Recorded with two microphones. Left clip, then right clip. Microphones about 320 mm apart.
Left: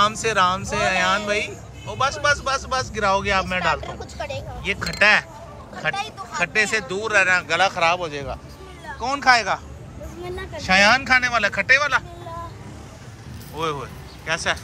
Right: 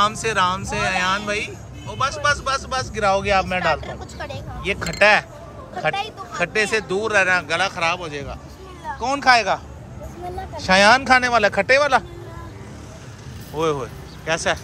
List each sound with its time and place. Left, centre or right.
0.0 s speech: centre
4.2 s speech: centre
4.6 s speech: centre
10.7 s speech: centre
13.6 s speech: centre